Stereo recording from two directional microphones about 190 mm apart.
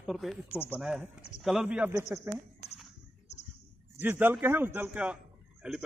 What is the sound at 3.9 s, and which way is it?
Speech, 10° right (ahead or behind).